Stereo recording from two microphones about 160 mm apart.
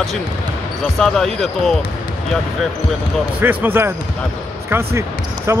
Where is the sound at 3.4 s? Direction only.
15° right (ahead or behind).